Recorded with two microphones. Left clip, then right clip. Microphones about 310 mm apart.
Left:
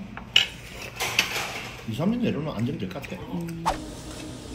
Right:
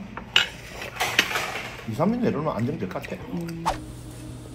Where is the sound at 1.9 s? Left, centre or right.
Right.